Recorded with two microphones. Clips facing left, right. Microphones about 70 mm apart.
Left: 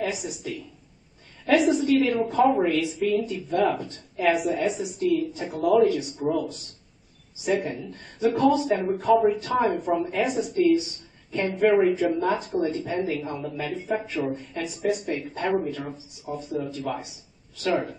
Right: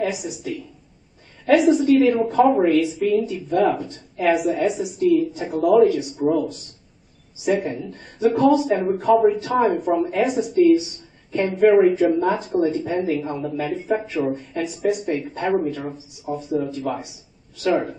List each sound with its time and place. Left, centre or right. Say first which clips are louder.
0.0 s speech: right 4 dB; centre
2.5 s speech: right 6 dB; centre
2.8 s speech: right 4 dB; centre
13.7 s speech: right 3 dB; centre